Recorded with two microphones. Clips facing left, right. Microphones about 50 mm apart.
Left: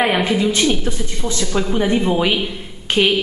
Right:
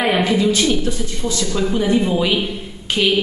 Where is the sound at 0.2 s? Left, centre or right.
Left.